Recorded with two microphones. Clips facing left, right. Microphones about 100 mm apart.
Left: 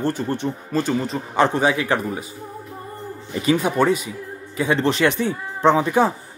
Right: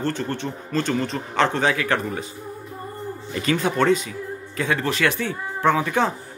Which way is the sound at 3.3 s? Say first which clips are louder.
Left 3 dB; 15° left (ahead or behind).